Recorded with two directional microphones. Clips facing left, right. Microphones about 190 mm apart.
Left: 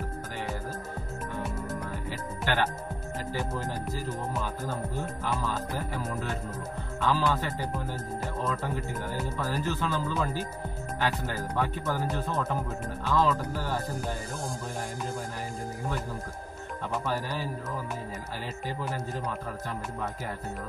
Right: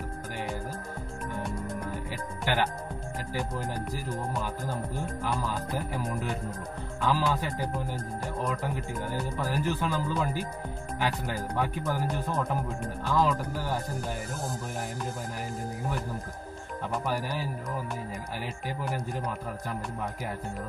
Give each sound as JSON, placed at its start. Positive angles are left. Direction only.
{"t": 2.4, "sound": "speech", "side_deg": -15}
{"t": 7.0, "sound": "speech", "side_deg": -15}
{"t": 17.0, "sound": "speech", "side_deg": -15}
{"t": 18.8, "sound": "speech", "side_deg": -15}